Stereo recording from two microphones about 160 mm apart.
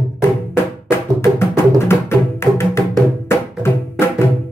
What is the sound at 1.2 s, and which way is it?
Music, 15° left (ahead or behind).